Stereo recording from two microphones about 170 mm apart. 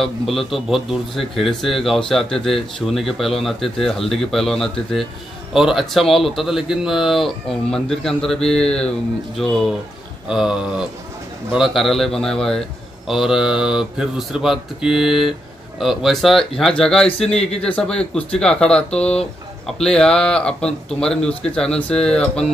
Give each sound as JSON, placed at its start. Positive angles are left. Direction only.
{"t": 0.0, "sound": "speech", "side_deg": 0}